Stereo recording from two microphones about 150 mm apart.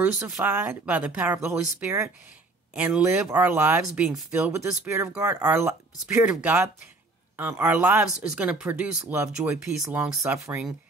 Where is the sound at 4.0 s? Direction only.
Centre (ahead or behind).